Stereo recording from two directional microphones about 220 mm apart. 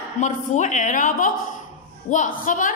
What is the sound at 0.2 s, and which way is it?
A woman's voice, 35° left (ahead or behind).